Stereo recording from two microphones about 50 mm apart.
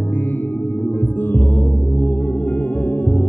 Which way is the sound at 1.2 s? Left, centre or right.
Left.